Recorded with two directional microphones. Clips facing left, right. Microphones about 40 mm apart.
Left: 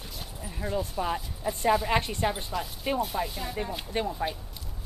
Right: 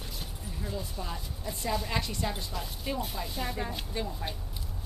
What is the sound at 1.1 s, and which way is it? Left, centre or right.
Speech, centre.